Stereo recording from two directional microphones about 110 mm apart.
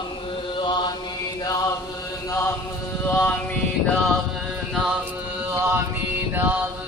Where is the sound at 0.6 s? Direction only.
40° left (ahead or behind).